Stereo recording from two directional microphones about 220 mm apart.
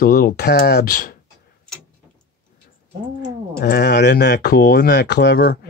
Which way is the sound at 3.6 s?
50° left (ahead or behind).